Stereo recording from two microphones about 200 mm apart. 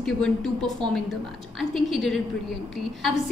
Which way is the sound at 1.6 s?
Centre (ahead or behind).